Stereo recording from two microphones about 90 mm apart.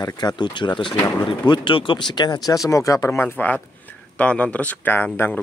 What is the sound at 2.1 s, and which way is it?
Speech, 50° left (ahead or behind).